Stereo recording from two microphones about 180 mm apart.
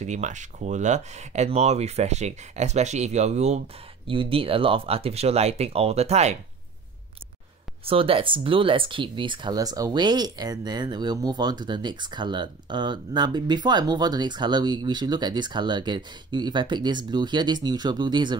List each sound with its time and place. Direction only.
0.0 s speech: 40° right (ahead or behind)
7.8 s speech: 30° right (ahead or behind)